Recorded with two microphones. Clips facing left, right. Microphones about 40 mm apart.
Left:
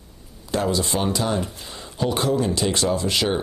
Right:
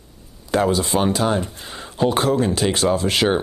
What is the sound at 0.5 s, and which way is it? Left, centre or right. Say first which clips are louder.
Speech: right 4 dB; right.